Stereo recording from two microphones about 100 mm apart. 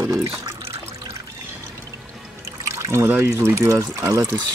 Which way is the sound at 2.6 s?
30° right (ahead or behind).